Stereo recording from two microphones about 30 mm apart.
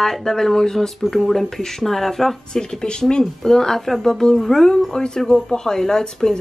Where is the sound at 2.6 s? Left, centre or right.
Left.